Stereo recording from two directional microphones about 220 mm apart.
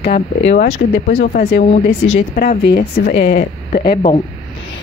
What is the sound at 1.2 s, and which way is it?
Speech, 45° left (ahead or behind).